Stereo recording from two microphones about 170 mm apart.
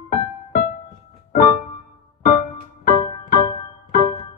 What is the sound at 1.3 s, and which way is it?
Keyboard, 45° left (ahead or behind).